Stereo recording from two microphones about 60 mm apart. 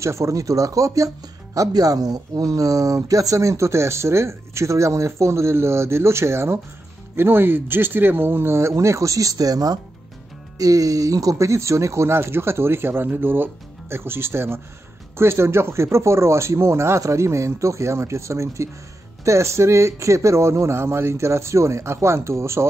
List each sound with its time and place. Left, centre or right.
0.0 s speech: right
10.6 s speech: right